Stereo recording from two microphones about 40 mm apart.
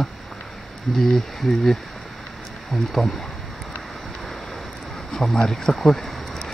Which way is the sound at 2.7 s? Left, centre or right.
Centre.